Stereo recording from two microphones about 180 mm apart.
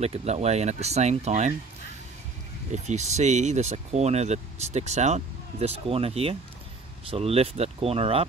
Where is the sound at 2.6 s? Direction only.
40° right (ahead or behind).